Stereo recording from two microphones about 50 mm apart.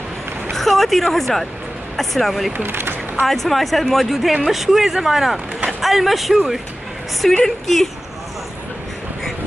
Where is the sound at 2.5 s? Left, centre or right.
Right.